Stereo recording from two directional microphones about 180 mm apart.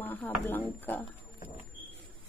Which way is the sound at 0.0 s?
10° left (ahead or behind).